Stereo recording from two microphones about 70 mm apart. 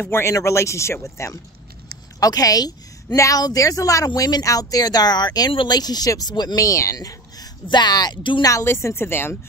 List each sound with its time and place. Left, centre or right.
0.0 s a man's voice: left
2.1 s a woman's voice: left
7.0 s speech: left
8.6 s a woman's voice: left